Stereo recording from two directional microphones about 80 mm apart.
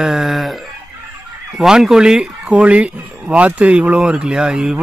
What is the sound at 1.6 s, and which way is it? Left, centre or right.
Speech, centre.